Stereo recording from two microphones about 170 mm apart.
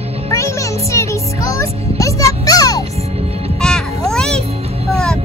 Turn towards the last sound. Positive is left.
turn(degrees=0)  # may be behind; listen again after turning